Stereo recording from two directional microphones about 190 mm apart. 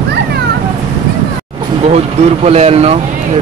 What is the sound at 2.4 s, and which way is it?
Speech, 30° right (ahead or behind).